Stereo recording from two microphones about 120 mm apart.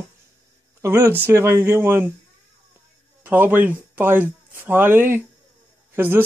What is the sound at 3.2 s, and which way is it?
Speech, 15° right (ahead or behind).